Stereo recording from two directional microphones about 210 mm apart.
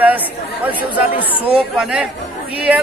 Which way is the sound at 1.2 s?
25° left (ahead or behind).